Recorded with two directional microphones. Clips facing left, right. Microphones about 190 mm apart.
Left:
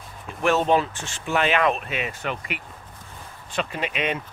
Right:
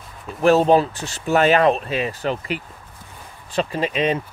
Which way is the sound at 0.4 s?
35° right (ahead or behind).